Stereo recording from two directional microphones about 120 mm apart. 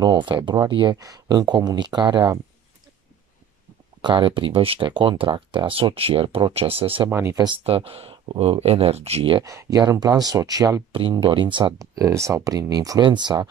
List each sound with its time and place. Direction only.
0.0 s speech: 40° right (ahead or behind)
4.0 s speech: 45° right (ahead or behind)
7.1 s speech: 20° right (ahead or behind)
7.6 s speech: 50° right (ahead or behind)
9.4 s speech: 25° right (ahead or behind)
10.9 s speech: 45° right (ahead or behind)
11.8 s speech: 25° right (ahead or behind)